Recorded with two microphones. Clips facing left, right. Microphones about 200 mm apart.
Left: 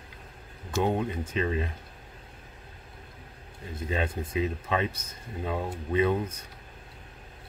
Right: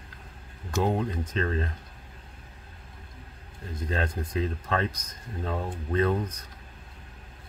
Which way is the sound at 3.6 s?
5° left (ahead or behind).